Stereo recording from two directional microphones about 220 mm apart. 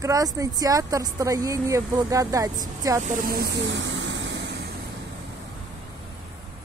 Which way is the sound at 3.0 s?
35° right (ahead or behind).